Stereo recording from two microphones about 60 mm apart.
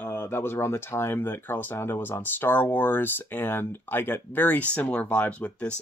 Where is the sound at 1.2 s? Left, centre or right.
Left.